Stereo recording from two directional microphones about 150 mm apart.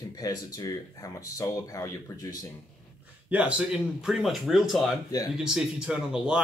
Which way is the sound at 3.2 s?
10° right (ahead or behind).